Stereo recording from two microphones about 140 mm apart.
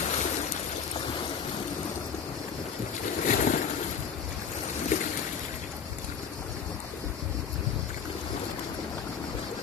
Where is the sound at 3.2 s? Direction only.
65° left (ahead or behind).